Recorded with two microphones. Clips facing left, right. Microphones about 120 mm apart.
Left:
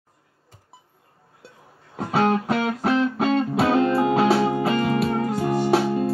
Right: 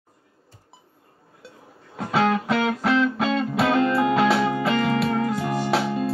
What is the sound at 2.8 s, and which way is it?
Music, 45° left (ahead or behind).